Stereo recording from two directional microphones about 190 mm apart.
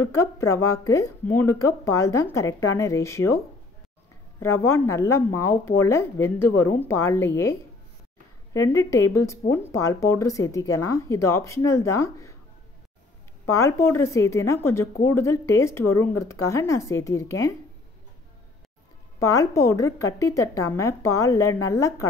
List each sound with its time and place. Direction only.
0.0 s speech: 15° left (ahead or behind)
8.5 s speech: 15° left (ahead or behind)
13.6 s speech: 15° left (ahead or behind)
19.1 s speech: 15° left (ahead or behind)